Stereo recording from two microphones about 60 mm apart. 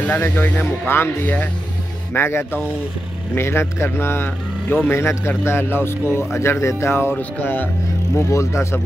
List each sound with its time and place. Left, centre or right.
0.3 s speech: left
0.8 s speech: left
2.1 s speech: left
7.2 s speech: left
8.2 s speech: left